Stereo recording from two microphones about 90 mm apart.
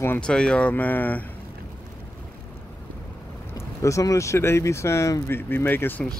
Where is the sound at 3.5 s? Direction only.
35° left (ahead or behind).